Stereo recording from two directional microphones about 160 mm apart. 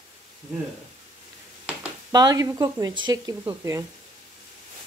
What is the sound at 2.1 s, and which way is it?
A woman's voice, 25° right (ahead or behind).